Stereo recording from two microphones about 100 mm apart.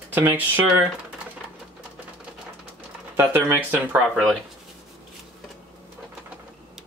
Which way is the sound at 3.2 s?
20° right (ahead or behind).